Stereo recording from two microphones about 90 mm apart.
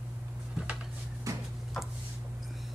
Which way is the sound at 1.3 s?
35° right (ahead or behind).